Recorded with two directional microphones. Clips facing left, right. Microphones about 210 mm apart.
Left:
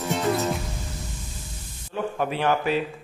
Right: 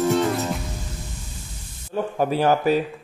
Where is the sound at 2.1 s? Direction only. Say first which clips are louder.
Right 5 dB; 40° right (ahead or behind).